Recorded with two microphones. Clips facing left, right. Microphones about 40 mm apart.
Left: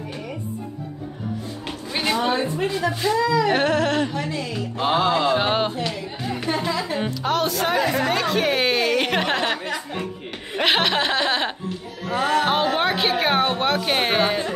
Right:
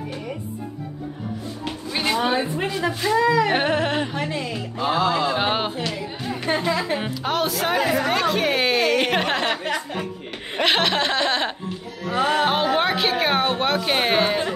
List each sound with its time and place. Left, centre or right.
1.6 s speech: centre
3.2 s a woman's voice: right
4.1 s a woman's voice: right
4.7 s speech: left
5.1 s a woman's voice: centre
6.4 s a woman's voice: right
7.0 s a woman's voice: centre
10.6 s a woman's voice: centre
12.2 s a woman's voice: right
12.4 s a woman's voice: centre